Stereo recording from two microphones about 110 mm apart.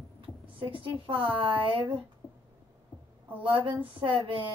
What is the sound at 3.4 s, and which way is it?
Speech, 50° right (ahead or behind).